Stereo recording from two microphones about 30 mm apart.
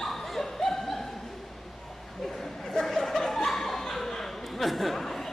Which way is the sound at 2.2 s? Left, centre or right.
Centre.